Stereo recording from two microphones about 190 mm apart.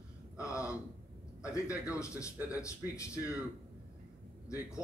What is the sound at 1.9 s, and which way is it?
A man's voice, 15° left (ahead or behind).